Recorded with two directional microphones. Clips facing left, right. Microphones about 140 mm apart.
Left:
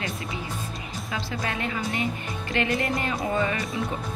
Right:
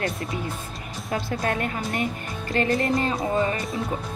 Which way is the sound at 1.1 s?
50° right (ahead or behind).